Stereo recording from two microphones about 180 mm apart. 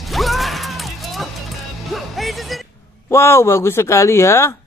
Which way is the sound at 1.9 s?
Centre (ahead or behind).